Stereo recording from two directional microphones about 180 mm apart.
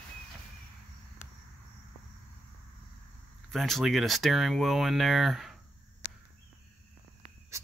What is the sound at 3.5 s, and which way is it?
Speech, centre (ahead or behind).